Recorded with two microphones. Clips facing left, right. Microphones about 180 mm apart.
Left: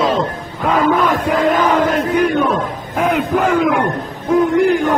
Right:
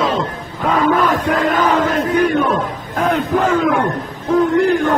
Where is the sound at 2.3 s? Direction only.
5° left (ahead or behind).